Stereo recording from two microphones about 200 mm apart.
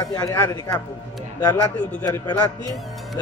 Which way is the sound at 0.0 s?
15° left (ahead or behind).